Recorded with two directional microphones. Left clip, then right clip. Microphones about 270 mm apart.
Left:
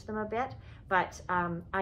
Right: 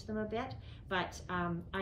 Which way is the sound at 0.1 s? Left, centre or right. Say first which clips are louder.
Left 5 dB; centre.